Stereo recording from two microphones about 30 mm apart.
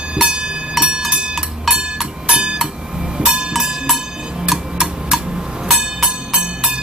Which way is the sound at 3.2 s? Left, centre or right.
Right.